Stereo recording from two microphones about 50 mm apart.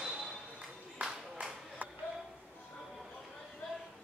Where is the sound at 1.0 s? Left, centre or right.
Centre.